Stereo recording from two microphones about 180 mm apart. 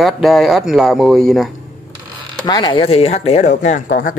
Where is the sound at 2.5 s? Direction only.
25° left (ahead or behind); by 4.1 s 50° left (ahead or behind).